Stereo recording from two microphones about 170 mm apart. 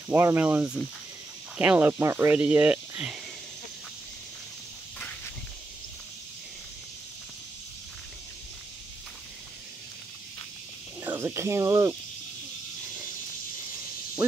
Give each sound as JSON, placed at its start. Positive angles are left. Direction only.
{"t": 0.1, "sound": "speech", "side_deg": -10}
{"t": 11.0, "sound": "speech", "side_deg": -15}